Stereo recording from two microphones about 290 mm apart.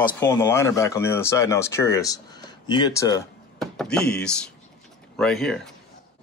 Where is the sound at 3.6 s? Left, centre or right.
Centre.